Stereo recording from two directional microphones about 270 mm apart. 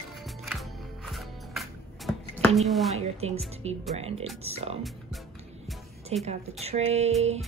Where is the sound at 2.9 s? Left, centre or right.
Right.